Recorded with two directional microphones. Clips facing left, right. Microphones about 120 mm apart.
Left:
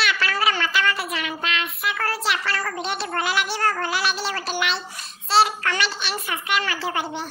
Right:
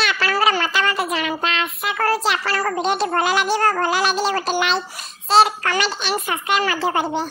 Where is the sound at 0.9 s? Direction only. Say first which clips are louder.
Right 4 dB; 20° right (ahead or behind).